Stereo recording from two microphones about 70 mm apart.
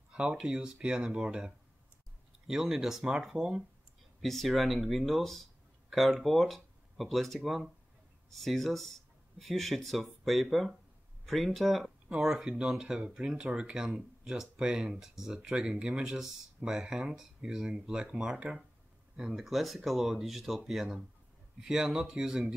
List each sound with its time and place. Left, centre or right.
0.1 s speech: centre